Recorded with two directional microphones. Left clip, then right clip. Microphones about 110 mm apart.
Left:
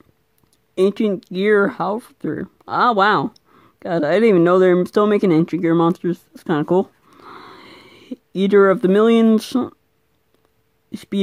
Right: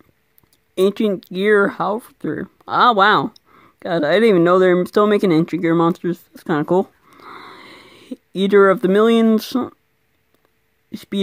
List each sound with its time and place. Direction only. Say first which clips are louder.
0.7 s speech: right 1 dB; 5° right (ahead or behind)
10.9 s speech: even; centre (ahead or behind)